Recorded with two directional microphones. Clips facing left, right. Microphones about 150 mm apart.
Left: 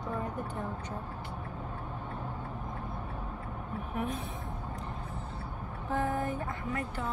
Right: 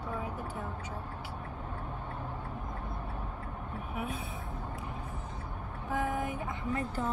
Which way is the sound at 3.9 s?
10° right (ahead or behind).